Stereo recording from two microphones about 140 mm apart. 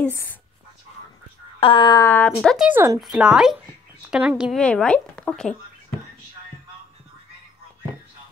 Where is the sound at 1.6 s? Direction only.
35° left (ahead or behind).